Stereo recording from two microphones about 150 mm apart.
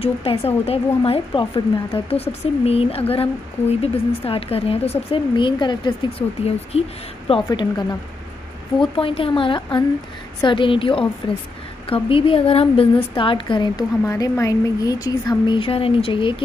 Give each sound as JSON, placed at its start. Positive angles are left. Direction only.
{"t": 0.0, "sound": "speech", "side_deg": 40}
{"t": 7.4, "sound": "speech", "side_deg": 30}